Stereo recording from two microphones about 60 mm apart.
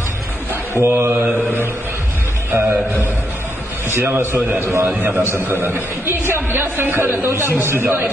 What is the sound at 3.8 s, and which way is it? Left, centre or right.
Speech, right.